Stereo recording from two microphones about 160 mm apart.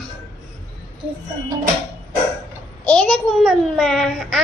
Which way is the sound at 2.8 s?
5° left (ahead or behind).